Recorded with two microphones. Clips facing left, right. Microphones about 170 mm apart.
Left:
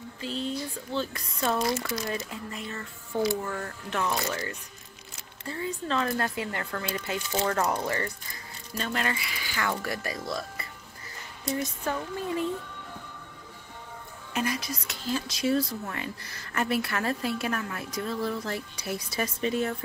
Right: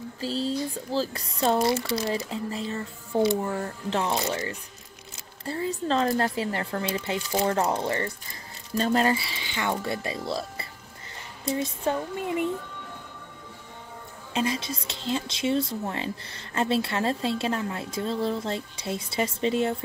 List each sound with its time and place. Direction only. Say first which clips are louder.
0.2 s a sound: right 4 dB; 35° right (ahead or behind)
1.4 s a woman's voice: right 4 dB; 30° right (ahead or behind)
14.3 s a woman's voice: right 3 dB; 25° right (ahead or behind)